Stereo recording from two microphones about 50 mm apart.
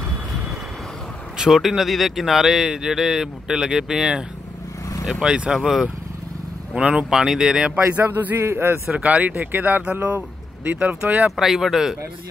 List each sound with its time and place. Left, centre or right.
1.5 s speech: centre
5.2 s speech: centre
6.8 s speech: right
7.1 s speech: centre
7.9 s speech: right
8.5 s a man's voice: right
8.9 s speech: right
10.1 s speech: right
11.3 s speech: centre